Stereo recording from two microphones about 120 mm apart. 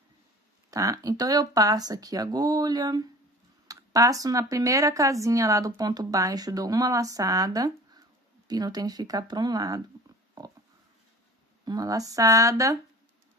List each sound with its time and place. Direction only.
0.7 s speech: 30° right (ahead or behind)
10.4 s pig: 30° right (ahead or behind)
11.6 s speech: 30° right (ahead or behind)